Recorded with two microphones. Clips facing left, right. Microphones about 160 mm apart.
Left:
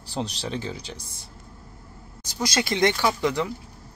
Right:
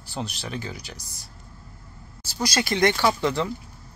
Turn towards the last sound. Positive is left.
turn(degrees=15)  # may be behind; listen again after turning